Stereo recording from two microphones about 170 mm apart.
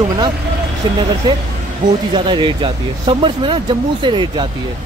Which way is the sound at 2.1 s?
30° right (ahead or behind).